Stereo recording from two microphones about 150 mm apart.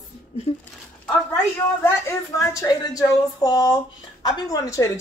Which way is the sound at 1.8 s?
20° left (ahead or behind).